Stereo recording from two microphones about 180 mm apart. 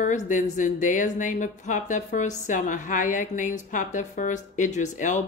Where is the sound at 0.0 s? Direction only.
45° left (ahead or behind).